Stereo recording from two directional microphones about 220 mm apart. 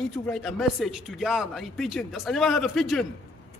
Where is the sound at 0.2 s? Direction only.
Centre (ahead or behind).